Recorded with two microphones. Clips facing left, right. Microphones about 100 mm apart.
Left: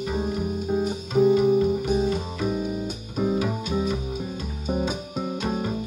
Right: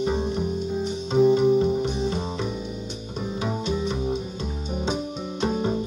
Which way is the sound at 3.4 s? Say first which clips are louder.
Left 1 dB; 25° right (ahead or behind).